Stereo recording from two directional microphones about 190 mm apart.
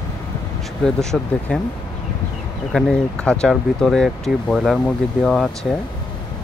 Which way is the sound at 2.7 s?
5° left (ahead or behind).